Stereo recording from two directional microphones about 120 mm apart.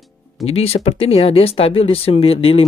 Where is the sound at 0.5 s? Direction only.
55° left (ahead or behind).